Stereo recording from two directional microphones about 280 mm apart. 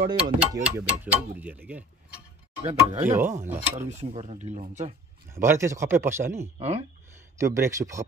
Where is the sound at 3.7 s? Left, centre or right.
Right.